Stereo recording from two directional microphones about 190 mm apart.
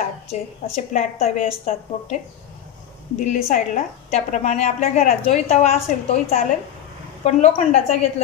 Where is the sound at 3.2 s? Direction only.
40° left (ahead or behind).